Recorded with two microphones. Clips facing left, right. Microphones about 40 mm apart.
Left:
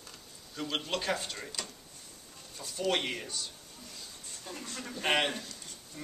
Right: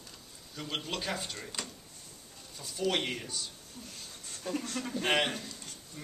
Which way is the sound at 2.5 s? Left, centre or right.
Centre.